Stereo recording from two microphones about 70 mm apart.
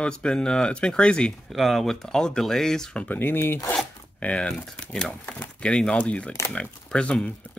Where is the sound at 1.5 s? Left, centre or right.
Centre.